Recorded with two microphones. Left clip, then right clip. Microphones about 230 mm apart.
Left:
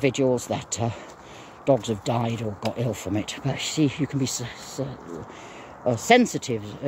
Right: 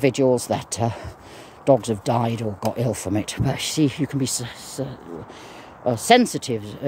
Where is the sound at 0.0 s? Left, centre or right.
Centre.